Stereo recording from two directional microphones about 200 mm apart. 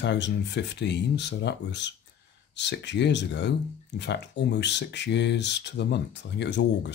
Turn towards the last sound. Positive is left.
turn(degrees=60)  # may be behind; listen again after turning